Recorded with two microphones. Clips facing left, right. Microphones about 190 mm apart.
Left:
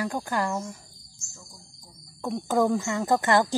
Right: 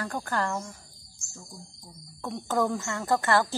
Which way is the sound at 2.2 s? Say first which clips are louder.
Left 4 dB; 15° left (ahead or behind).